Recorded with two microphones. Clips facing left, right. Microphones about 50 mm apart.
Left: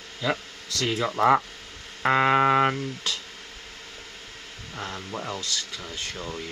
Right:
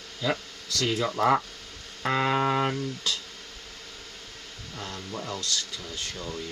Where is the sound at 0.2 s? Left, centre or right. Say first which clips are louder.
Left 1 dB; centre.